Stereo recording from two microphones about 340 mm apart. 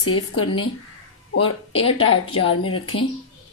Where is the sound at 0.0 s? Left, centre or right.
Left.